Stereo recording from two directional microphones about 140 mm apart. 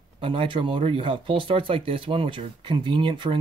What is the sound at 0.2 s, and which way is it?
Speech, 40° right (ahead or behind).